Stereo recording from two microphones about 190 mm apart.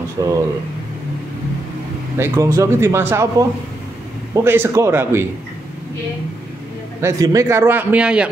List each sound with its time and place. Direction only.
0.2 s speech: 20° right (ahead or behind)
2.1 s a man's voice: 15° right (ahead or behind)
4.5 s a man's voice: 15° right (ahead or behind)
7.0 s a man's voice: 15° right (ahead or behind)